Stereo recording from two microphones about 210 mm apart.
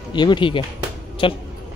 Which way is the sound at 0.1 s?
20° left (ahead or behind).